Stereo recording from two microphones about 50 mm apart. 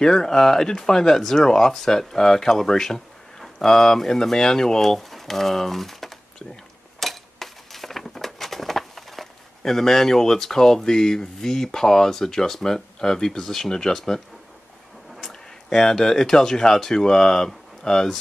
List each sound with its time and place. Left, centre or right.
0.0 s speech: centre
7.0 s a sound: centre
15.1 s speech: centre